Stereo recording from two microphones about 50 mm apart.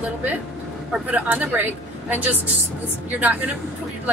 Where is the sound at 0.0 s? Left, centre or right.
Right.